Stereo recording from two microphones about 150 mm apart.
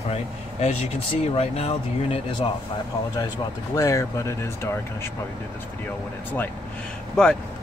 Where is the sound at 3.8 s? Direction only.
20° left (ahead or behind).